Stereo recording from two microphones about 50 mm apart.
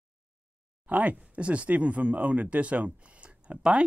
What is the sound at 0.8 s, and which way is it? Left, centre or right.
Speech, right.